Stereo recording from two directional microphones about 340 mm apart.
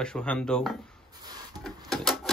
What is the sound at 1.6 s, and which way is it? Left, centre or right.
Printer, centre.